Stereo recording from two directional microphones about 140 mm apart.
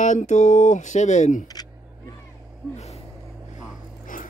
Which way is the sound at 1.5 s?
30° left (ahead or behind).